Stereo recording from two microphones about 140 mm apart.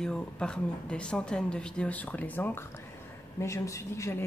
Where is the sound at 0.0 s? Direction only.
5° left (ahead or behind).